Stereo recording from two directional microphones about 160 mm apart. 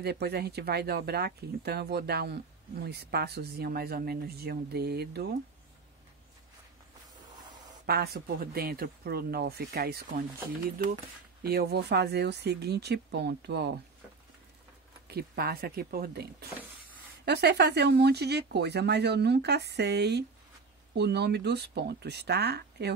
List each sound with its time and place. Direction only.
0.0 s speech: 90° right
7.8 s speech: 75° right (ahead or behind)
11.4 s speech: 85° right
15.0 s speech: 80° right